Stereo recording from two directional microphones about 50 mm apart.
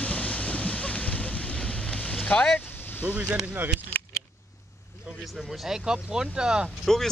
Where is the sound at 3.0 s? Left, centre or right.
Right.